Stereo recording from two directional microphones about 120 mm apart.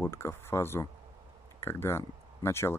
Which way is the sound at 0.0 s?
20° left (ahead or behind).